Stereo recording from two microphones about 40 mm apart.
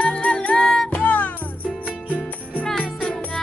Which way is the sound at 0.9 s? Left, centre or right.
Left.